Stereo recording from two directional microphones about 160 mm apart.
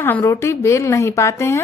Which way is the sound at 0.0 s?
15° left (ahead or behind).